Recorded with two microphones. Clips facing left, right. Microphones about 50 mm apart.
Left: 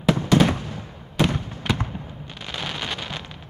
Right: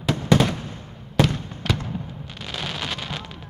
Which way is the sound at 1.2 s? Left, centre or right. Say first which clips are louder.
Left 1 dB; centre.